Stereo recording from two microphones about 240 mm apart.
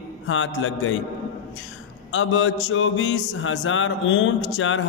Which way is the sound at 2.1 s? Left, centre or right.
Left.